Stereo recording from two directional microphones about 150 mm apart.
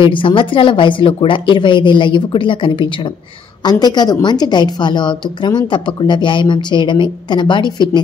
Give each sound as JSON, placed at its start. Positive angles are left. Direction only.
{"t": 0.0, "sound": "a woman's voice", "side_deg": 35}